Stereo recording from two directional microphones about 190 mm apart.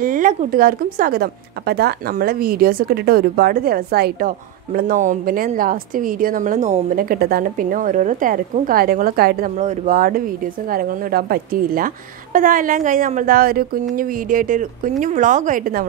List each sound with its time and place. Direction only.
0.0 s a woman's voice: 45° right (ahead or behind)